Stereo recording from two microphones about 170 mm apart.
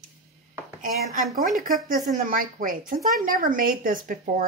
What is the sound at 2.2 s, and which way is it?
A woman's voice, 50° right (ahead or behind).